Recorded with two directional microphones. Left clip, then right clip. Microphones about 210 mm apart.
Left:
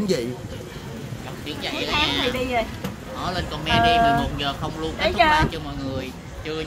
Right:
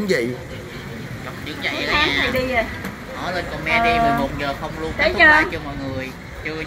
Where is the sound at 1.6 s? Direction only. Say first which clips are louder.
Right 4 dB; 25° left (ahead or behind).